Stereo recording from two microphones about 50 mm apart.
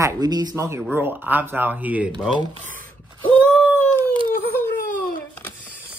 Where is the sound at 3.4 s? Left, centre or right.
Left.